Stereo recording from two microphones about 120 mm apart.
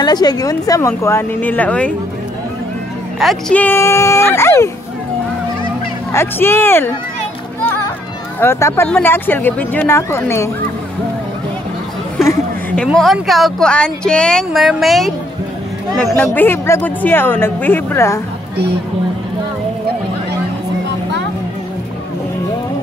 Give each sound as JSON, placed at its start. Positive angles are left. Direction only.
{"t": 0.0, "sound": "speech", "side_deg": 35}
{"t": 3.2, "sound": "speech", "side_deg": 0}
{"t": 3.5, "sound": "speech", "side_deg": 15}
{"t": 6.1, "sound": "speech", "side_deg": 20}
{"t": 8.4, "sound": "speech", "side_deg": 20}
{"t": 12.8, "sound": "speech", "side_deg": 0}
{"t": 16.3, "sound": "speech", "side_deg": 20}